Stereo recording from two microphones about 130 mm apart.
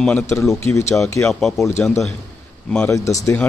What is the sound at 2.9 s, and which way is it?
Speech, 25° left (ahead or behind).